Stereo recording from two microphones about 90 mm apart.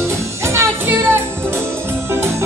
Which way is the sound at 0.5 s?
25° right (ahead or behind).